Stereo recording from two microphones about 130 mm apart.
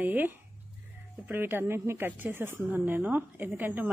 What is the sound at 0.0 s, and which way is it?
A woman's voice, 15° right (ahead or behind).